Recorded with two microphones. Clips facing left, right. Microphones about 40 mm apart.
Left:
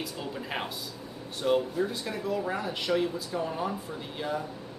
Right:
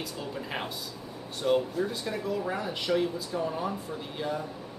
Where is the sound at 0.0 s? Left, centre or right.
Centre.